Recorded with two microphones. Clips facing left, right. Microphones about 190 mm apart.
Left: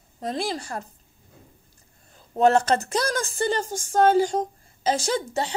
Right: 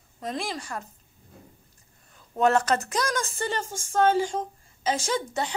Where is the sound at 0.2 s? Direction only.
35° left (ahead or behind).